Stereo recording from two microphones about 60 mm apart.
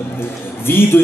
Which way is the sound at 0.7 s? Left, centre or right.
Left.